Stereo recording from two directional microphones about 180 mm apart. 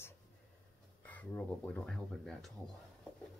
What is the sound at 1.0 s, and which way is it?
Speech, 10° left (ahead or behind).